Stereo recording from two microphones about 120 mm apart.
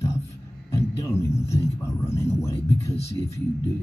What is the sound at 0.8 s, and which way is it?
Speech, 25° left (ahead or behind).